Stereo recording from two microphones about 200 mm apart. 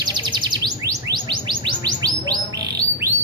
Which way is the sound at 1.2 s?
25° right (ahead or behind).